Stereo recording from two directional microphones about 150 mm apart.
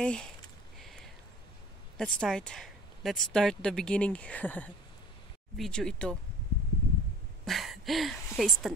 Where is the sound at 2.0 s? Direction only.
5° left (ahead or behind).